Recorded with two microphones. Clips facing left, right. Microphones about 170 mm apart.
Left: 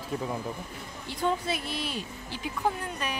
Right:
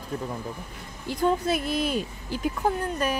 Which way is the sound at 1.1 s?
45° right (ahead or behind).